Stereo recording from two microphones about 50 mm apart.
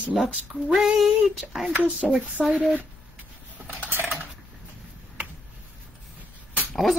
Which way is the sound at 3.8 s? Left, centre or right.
Right.